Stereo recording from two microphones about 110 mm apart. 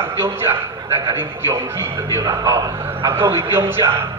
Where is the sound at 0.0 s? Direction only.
20° right (ahead or behind).